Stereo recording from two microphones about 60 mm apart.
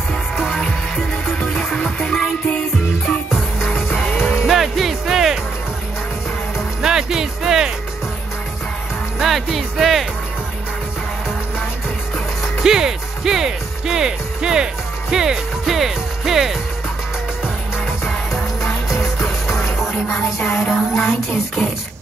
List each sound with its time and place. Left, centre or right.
0.6 s music: centre
3.3 s music: centre
6.8 s speech: centre
9.2 s child singing: centre
12.6 s music: centre
17.8 s music: centre
20.4 s child singing: centre